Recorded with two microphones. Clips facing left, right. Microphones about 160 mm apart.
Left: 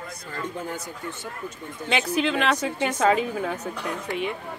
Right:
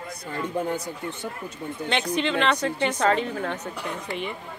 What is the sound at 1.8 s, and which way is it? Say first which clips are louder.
Speech: left 2 dB; 5° left (ahead or behind).